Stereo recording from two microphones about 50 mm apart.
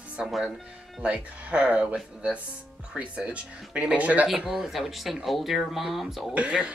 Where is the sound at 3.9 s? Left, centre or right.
Right.